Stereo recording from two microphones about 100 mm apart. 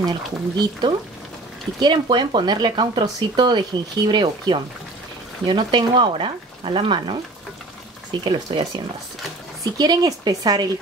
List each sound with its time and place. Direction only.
0.0 s speech: 45° right (ahead or behind)
8.2 s speech: 45° right (ahead or behind)